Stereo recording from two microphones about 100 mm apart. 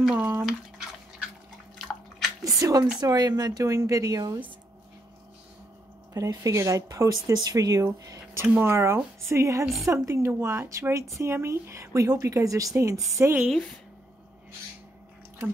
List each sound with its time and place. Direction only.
0.0 s speech: 15° right (ahead or behind)
2.4 s speech: 35° right (ahead or behind)
6.1 s speech: 35° right (ahead or behind)